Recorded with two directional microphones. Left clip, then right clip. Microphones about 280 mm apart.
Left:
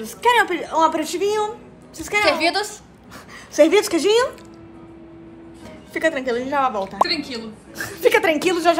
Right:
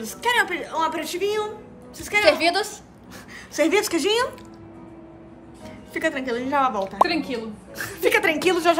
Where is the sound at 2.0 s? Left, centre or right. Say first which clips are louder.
Left 1 dB; centre.